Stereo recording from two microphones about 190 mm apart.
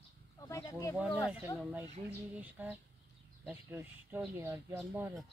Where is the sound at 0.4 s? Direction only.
15° left (ahead or behind).